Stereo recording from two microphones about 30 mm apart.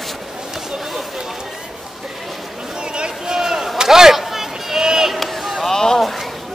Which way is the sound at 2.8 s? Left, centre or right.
Right.